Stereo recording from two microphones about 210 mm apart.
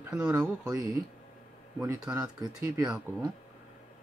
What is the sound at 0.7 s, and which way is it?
Speech, 15° right (ahead or behind).